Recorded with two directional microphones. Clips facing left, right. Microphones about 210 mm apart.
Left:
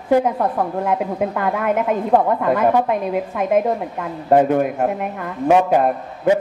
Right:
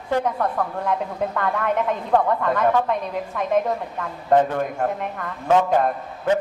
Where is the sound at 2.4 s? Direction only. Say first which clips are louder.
Left 4 dB; 10° left (ahead or behind).